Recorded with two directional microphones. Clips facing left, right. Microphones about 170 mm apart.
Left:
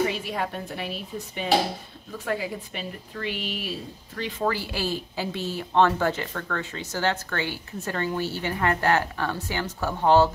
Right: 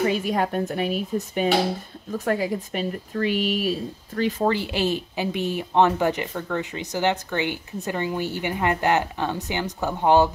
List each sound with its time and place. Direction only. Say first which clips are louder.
0.2 s speech: right 7 dB; 45° right (ahead or behind)
4.5 s speech: right 4 dB; 20° right (ahead or behind)